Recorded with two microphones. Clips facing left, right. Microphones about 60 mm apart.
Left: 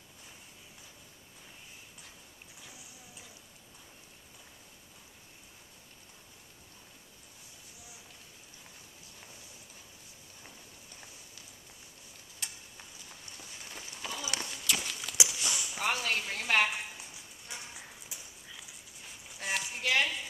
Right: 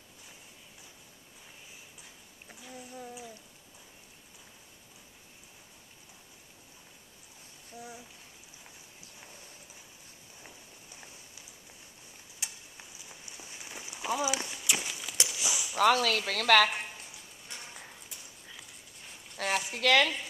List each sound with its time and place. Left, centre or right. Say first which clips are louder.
2.7 s a sound: right 10 dB; right
12.4 s tick-tock: right 1 dB; centre
13.2 s horse: right 1 dB; centre
14.3 s walk: right 2 dB; centre
15.1 s dog: even; centre
15.8 s speech: right 8 dB; right
17.5 s clip-clop: even; centre
18.5 s dog: even; centre
19.3 s a sound: right 4 dB; right